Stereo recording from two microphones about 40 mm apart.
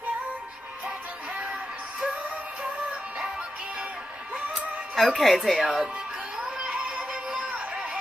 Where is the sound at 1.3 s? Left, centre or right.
Right.